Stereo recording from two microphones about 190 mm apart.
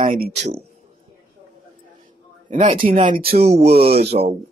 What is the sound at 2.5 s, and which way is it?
Speech, 35° right (ahead or behind).